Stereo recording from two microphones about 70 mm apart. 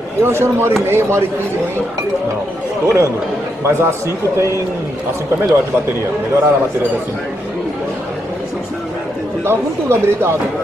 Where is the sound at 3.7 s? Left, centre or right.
Right.